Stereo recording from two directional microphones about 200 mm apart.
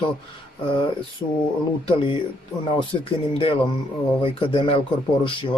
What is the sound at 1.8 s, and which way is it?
A man's voice, 25° left (ahead or behind).